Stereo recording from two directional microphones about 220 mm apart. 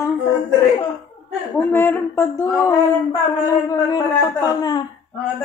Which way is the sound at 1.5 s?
10° left (ahead or behind).